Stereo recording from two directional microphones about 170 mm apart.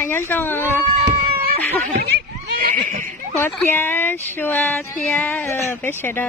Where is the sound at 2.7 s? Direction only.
50° right (ahead or behind).